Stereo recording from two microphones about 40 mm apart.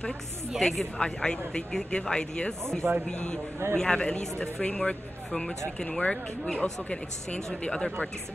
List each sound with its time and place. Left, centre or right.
0.6 s speech: centre
0.9 s speech: left
2.8 s speech: right
3.7 s speech: centre
5.9 s speech: left